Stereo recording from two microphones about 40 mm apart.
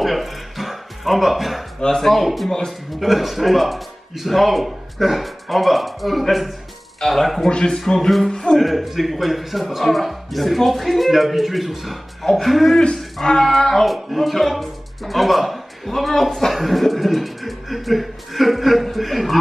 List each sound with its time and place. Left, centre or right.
0.0 s music: centre
1.8 s speech: centre
2.0 s speech: centre
7.4 s speech: centre
8.5 s speech: centre
12.7 s speech: centre